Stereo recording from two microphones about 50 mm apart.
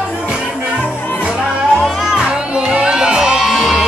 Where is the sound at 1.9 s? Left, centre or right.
Centre.